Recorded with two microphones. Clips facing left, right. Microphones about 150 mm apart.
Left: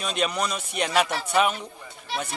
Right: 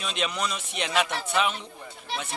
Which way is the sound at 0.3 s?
40° left (ahead or behind).